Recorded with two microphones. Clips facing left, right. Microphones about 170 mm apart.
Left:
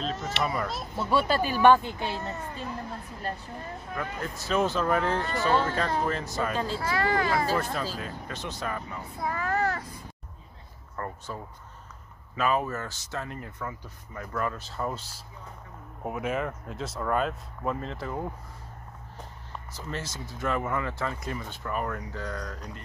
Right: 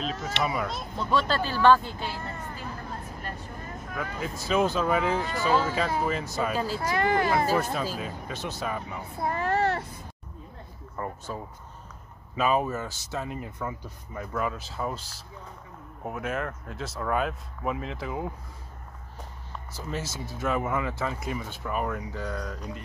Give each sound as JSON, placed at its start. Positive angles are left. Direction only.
{"t": 0.0, "sound": "speech", "side_deg": 0}
{"t": 3.9, "sound": "speech", "side_deg": -5}
{"t": 9.2, "sound": "child singing", "side_deg": -25}
{"t": 11.0, "sound": "a sound", "side_deg": -15}
{"t": 12.4, "sound": "speech", "side_deg": -15}
{"t": 16.0, "sound": "speech", "side_deg": 0}
{"t": 19.7, "sound": "speech", "side_deg": -5}